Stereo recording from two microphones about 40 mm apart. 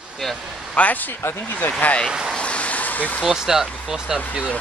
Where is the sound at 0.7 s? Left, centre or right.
Left.